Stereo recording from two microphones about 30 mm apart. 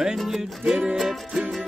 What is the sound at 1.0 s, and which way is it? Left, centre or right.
Music, centre.